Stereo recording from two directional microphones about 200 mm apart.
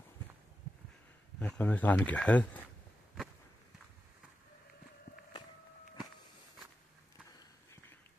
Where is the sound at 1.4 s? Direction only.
10° left (ahead or behind).